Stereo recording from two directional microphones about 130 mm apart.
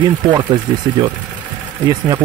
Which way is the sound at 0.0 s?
35° right (ahead or behind).